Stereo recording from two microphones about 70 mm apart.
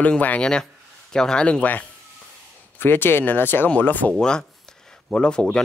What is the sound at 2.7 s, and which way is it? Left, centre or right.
Speech, left.